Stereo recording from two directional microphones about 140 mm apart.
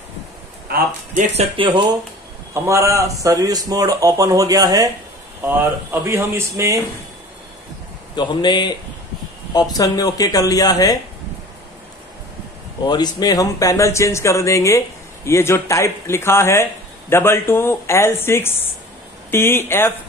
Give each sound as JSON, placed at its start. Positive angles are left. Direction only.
{"t": 0.7, "sound": "speech", "side_deg": -90}
{"t": 1.3, "sound": "speech", "side_deg": -40}
{"t": 2.5, "sound": "speech", "side_deg": -20}
{"t": 8.2, "sound": "a man's voice", "side_deg": 30}
{"t": 12.8, "sound": "speech", "side_deg": 30}